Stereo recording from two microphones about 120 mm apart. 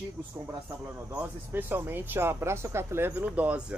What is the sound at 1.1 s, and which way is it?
Speech, 15° right (ahead or behind).